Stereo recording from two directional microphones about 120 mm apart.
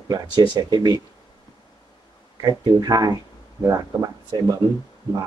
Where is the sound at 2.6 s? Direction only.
35° right (ahead or behind).